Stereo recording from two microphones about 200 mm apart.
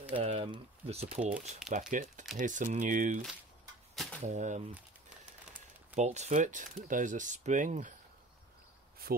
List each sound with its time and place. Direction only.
0.2 s speech: 30° right (ahead or behind)
3.9 s a sound: centre (ahead or behind)
4.3 s speech: 35° right (ahead or behind)
5.9 s speech: 35° right (ahead or behind)
9.0 s speech: 50° right (ahead or behind)